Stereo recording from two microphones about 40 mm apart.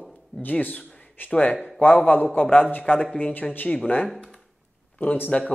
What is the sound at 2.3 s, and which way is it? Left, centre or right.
A man's voice, left.